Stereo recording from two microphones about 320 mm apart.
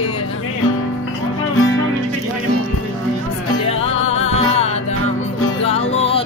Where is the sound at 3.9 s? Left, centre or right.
Left.